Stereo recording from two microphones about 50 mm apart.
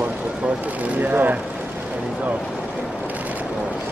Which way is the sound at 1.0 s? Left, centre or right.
Right.